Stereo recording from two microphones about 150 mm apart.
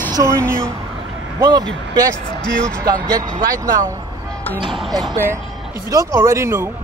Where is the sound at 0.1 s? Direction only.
20° right (ahead or behind).